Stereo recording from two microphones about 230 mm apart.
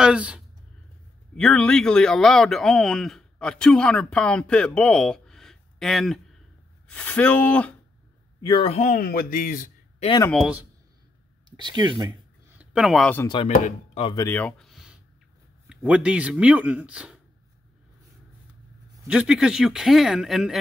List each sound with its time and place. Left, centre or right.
0.0 s speech: centre
8.4 s speech: centre; by 10.0 s left
10.0 s speech: centre
10.3 s speech: centre
11.5 s speech: centre
12.5 s speech: centre
13.9 s speech: centre
19.0 s speech: centre